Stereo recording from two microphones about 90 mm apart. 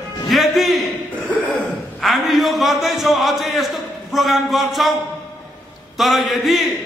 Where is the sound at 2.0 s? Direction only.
Centre (ahead or behind).